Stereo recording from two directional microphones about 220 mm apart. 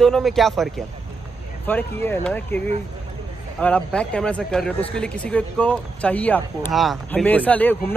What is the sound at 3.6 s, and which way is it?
Speech, 5° left (ahead or behind).